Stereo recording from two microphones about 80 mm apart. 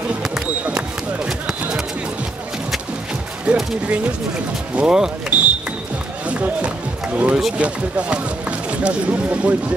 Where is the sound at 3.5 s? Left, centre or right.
Centre.